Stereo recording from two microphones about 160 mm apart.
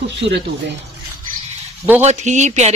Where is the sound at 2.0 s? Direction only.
45° right (ahead or behind).